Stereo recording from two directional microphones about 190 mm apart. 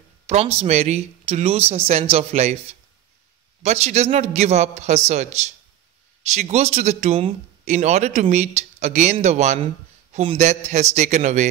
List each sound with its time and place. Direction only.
0.3 s speech: 30° right (ahead or behind)
3.6 s speech: 35° right (ahead or behind)